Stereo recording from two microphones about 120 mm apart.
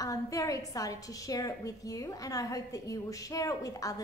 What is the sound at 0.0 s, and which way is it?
A woman's voice, 30° left (ahead or behind).